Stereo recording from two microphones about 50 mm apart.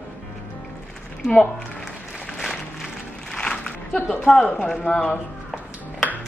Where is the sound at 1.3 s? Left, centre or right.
Centre.